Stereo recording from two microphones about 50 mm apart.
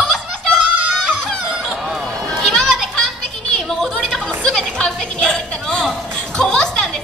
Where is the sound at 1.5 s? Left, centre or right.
Centre.